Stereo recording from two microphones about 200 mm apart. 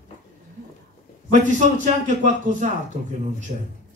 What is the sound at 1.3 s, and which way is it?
A man's voice, 40° right (ahead or behind).